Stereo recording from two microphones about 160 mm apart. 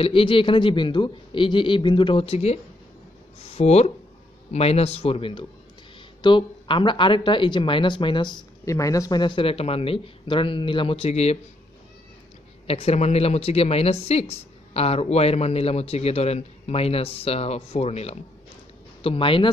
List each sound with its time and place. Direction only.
0.0 s speech: 35° left (ahead or behind)
12.6 s speech: 40° left (ahead or behind)